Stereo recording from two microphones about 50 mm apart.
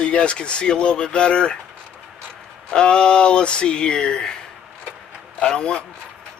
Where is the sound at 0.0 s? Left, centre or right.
Left.